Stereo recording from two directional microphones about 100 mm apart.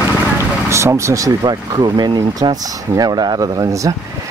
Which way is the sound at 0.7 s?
30° right (ahead or behind).